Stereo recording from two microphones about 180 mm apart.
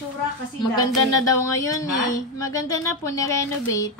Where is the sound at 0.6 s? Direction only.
20° left (ahead or behind).